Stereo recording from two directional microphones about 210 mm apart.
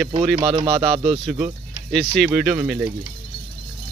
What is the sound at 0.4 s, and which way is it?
Speech, 25° right (ahead or behind).